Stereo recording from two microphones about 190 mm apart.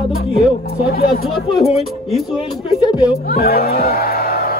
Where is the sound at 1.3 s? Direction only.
Centre (ahead or behind).